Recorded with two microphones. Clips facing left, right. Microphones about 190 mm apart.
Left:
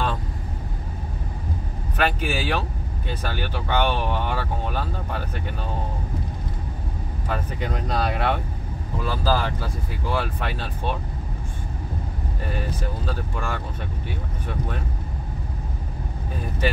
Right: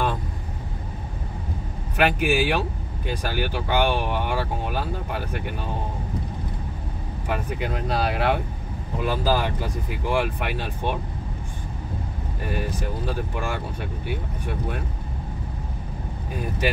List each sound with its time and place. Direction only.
2.0 s speech: 15° right (ahead or behind)
7.2 s speech: 10° right (ahead or behind)
12.5 s speech: 15° right (ahead or behind)